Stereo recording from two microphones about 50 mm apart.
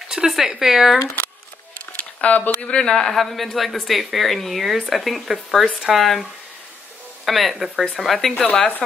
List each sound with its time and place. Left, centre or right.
0.1 s speech: centre
2.0 s a sound: left
2.8 s speech: centre
7.2 s speech: centre
8.5 s speech: centre